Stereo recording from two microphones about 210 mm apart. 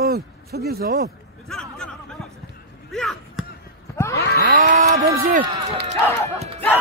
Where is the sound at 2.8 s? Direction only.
Centre (ahead or behind).